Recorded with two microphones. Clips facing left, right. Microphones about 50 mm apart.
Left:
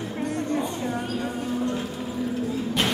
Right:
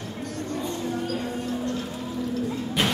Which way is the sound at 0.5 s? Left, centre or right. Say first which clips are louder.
Left 2 dB; left.